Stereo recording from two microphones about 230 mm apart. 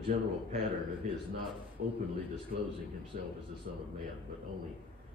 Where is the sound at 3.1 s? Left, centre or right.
Right.